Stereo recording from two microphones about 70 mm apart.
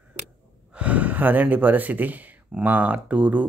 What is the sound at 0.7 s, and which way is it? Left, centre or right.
Speech, right.